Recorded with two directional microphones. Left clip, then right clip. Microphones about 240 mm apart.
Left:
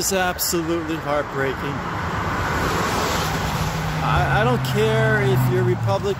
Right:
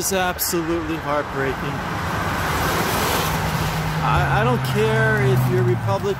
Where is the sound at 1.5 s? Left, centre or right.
Right.